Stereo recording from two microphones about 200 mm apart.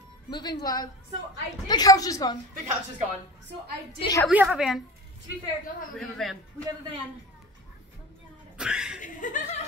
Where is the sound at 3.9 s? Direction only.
20° left (ahead or behind).